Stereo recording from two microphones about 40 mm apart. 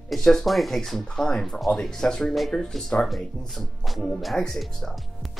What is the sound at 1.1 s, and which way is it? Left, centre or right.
Speech, centre.